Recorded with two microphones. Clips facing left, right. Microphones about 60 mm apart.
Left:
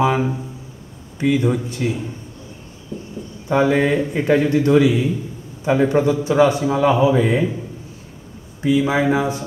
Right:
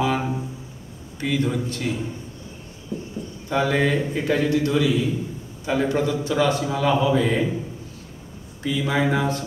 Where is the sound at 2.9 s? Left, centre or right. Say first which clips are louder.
Even; centre.